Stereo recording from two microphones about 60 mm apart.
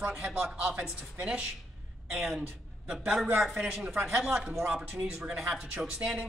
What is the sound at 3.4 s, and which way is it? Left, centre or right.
Speech, centre.